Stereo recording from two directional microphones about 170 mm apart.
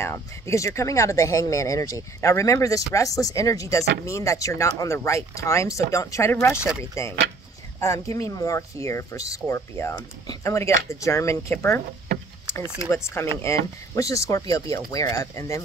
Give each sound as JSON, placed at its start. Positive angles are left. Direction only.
{"t": 0.0, "sound": "speech", "side_deg": 15}
{"t": 12.9, "sound": "speech", "side_deg": 15}